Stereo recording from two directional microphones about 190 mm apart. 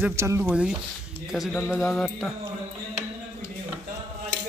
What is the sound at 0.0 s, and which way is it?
Speech, 15° right (ahead or behind).